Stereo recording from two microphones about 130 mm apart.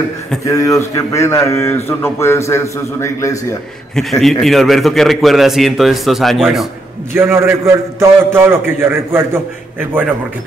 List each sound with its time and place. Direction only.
0.5 s a man's voice: 25° left (ahead or behind)
3.9 s a man's voice: centre (ahead or behind)
7.2 s a man's voice: 20° right (ahead or behind)